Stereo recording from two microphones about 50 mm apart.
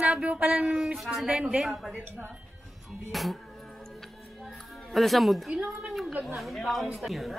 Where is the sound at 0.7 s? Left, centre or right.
Centre.